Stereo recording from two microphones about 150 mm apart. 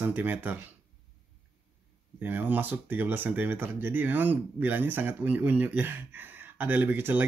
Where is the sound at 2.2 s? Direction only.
10° right (ahead or behind).